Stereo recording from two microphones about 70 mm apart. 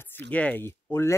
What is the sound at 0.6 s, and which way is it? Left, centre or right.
Speech, left.